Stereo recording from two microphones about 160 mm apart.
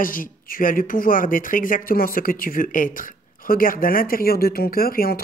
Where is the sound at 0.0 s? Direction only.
60° left (ahead or behind).